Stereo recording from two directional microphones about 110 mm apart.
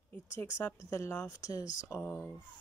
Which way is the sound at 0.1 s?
20° left (ahead or behind).